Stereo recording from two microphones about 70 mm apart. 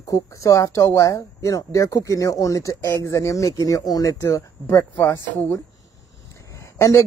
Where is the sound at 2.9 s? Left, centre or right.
Left.